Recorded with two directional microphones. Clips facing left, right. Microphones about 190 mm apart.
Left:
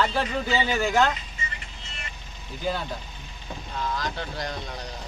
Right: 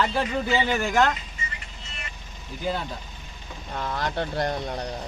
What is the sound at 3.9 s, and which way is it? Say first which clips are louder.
Speech: right 4 dB; 60° right (ahead or behind).